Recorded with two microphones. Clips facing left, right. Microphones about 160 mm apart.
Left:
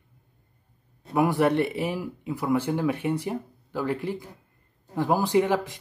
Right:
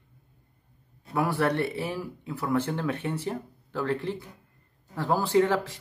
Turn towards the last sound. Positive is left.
turn(degrees=15)  # may be behind; listen again after turning